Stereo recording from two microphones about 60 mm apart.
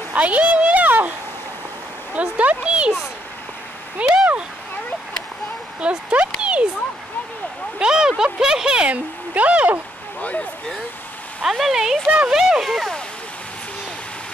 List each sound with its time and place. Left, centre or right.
0.1 s speech: right
2.1 s speech: right
4.0 s speech: centre
5.8 s speech: centre
7.8 s speech: centre
8.8 s speech: right
11.4 s speech: centre